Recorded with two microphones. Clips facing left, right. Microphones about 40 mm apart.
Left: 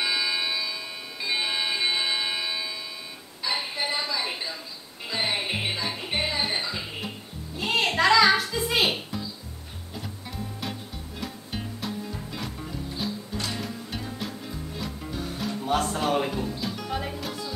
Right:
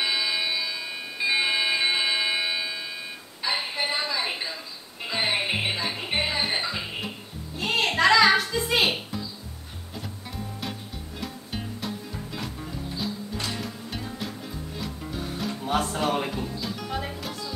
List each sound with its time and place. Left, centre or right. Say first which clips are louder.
0.0 s a sound: even; centre
3.4 s music: right 1 dB; centre
7.5 s music: even; centre